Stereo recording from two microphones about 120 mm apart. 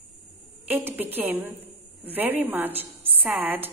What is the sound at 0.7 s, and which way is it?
A woman's voice, 15° right (ahead or behind).